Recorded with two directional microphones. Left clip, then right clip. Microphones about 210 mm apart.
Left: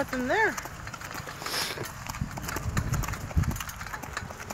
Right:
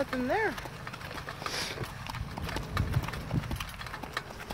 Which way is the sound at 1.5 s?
40° left (ahead or behind).